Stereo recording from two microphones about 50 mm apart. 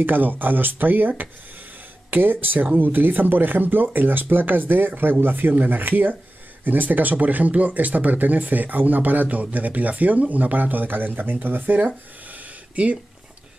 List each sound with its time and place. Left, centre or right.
0.0 s speech: right